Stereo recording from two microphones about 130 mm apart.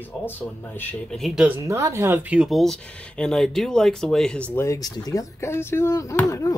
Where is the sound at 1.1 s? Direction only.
Centre (ahead or behind).